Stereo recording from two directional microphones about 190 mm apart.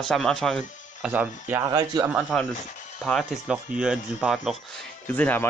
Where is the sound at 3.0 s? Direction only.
Centre (ahead or behind).